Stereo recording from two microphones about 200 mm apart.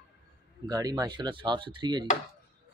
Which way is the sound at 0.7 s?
20° right (ahead or behind).